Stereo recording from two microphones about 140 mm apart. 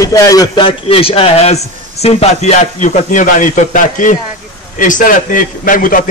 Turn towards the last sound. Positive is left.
turn(degrees=75)  # may be behind; listen again after turning